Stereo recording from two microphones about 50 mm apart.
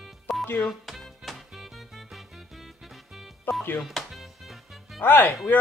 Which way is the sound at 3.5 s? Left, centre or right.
Left.